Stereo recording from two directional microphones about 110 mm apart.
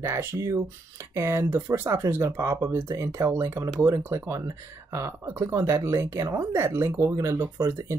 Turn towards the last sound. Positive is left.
turn(degrees=-30)  # may be behind; listen again after turning